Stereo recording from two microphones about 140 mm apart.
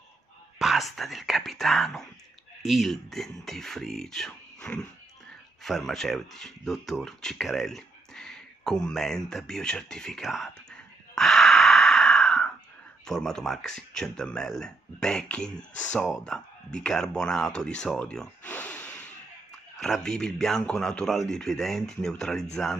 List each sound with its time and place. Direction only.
0.6 s speech: centre (ahead or behind)
11.1 s a sound: centre (ahead or behind)
13.0 s speech: 5° left (ahead or behind)